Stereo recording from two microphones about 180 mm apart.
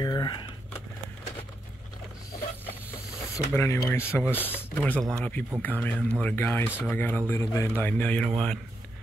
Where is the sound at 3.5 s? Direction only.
10° left (ahead or behind).